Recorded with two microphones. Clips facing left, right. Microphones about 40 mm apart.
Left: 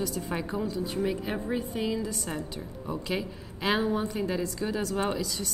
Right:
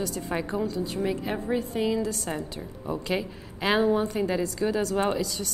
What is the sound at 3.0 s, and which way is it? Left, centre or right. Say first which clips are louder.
A woman's voice: right 3 dB; centre.